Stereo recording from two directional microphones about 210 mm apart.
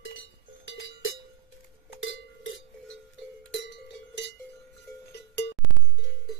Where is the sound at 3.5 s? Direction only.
55° left (ahead or behind).